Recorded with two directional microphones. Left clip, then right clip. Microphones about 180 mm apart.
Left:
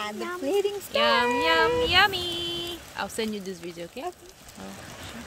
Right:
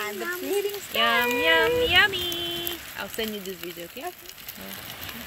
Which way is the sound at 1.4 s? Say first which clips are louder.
Right 1 dB; 5° left (ahead or behind).